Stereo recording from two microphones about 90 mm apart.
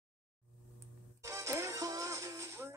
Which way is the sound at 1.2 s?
35° right (ahead or behind).